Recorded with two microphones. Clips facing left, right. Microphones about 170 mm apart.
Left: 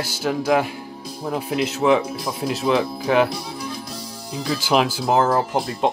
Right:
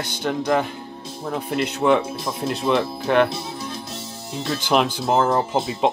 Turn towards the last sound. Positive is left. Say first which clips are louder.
# right 1 dB
turn(degrees=0)  # may be behind; listen again after turning